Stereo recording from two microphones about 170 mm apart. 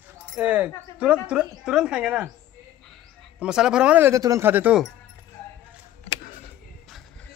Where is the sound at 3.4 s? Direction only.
5° right (ahead or behind).